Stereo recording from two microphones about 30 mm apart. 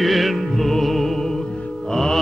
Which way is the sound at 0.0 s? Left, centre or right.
Centre.